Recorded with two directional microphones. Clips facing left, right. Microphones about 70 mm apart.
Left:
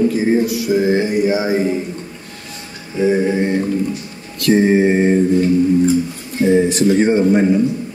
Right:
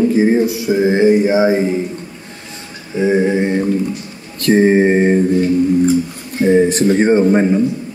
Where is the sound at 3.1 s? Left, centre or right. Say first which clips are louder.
Right 2 dB; right.